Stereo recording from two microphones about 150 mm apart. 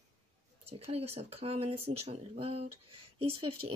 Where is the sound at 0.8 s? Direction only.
40° right (ahead or behind).